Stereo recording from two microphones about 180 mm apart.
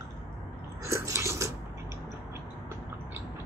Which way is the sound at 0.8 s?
15° right (ahead or behind).